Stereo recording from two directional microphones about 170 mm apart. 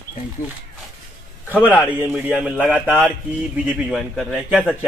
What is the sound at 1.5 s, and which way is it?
A man's voice, 10° right (ahead or behind).